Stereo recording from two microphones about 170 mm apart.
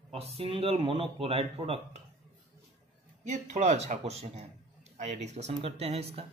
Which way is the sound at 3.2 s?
45° right (ahead or behind).